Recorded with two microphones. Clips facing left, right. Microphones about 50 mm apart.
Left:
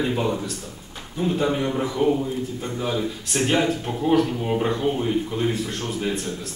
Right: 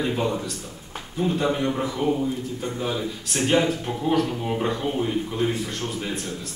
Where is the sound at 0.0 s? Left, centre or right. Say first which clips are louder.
Left 1 dB; centre.